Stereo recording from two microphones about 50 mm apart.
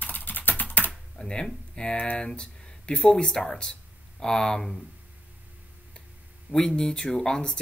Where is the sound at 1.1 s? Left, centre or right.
Centre.